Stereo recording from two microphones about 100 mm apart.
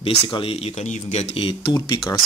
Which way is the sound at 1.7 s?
40° left (ahead or behind).